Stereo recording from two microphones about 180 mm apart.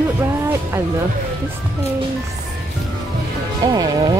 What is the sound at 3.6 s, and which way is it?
Speech, 20° right (ahead or behind).